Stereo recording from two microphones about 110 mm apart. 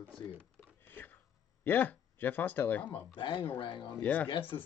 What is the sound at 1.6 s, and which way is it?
Speech, 15° left (ahead or behind).